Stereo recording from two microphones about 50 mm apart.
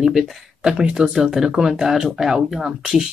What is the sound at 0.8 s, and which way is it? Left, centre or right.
Speech, centre.